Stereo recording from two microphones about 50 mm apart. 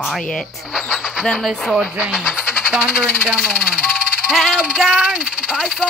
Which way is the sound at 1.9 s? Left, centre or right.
Centre.